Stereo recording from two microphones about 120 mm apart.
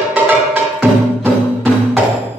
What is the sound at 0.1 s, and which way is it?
Music, 15° right (ahead or behind).